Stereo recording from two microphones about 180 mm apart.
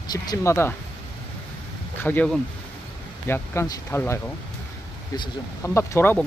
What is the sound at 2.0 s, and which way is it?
Speech, 5° left (ahead or behind).